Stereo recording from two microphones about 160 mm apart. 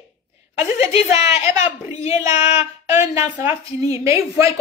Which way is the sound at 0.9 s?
40° left (ahead or behind).